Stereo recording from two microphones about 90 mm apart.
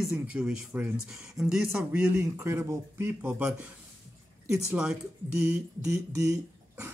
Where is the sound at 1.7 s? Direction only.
25° right (ahead or behind).